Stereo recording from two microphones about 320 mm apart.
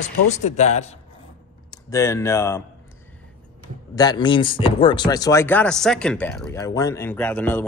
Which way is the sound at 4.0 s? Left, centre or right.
Centre.